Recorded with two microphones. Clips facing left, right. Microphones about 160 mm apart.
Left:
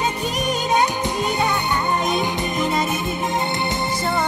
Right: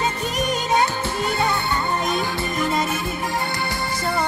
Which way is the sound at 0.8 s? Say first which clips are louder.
Left 2 dB; 15° left (ahead or behind).